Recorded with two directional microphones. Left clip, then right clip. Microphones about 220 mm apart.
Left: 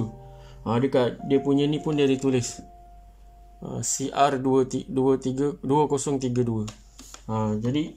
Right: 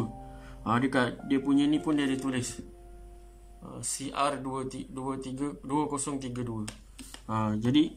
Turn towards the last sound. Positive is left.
turn(degrees=5)  # may be behind; listen again after turning